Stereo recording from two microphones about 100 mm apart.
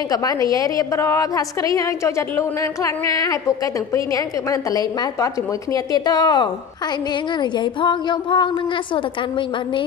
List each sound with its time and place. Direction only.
0.1 s a woman's voice: 40° left (ahead or behind)